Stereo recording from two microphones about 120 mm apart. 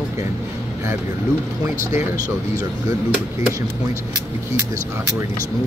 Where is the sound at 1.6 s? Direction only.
25° right (ahead or behind).